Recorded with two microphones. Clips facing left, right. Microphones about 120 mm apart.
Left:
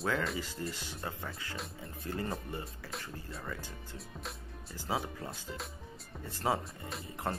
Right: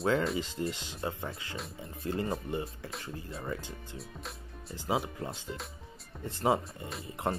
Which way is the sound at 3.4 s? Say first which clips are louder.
Right 4 dB; 20° right (ahead or behind).